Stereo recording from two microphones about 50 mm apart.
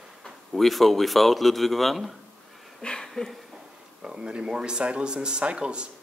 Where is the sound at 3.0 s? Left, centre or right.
Centre.